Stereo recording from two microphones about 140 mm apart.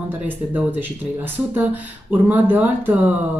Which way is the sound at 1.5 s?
10° right (ahead or behind).